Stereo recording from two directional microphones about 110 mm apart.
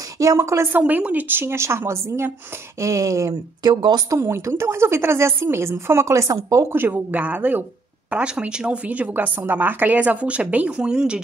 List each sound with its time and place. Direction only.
0.0 s speech: 30° right (ahead or behind)
4.1 s speech: 25° right (ahead or behind)
6.7 s a woman's voice: 20° right (ahead or behind)